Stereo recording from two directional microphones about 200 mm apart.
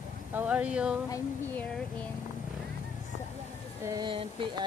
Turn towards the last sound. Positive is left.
turn(degrees=-25)  # may be behind; listen again after turning